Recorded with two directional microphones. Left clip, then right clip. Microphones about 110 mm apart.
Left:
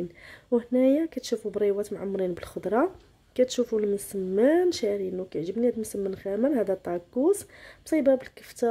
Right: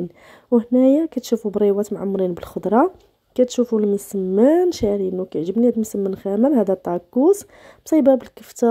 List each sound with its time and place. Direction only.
0.6 s speech: 50° right (ahead or behind)
6.6 s speech: 55° right (ahead or behind)